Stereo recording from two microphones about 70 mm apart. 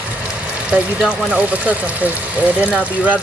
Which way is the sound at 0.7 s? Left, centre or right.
Centre.